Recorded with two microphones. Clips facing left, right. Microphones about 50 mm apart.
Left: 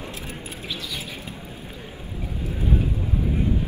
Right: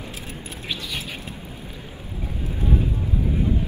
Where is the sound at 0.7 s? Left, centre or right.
Right.